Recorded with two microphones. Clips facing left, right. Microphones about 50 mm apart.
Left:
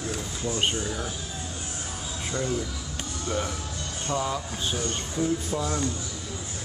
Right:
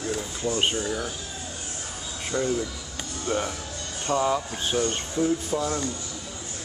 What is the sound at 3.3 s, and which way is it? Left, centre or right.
Speech, right.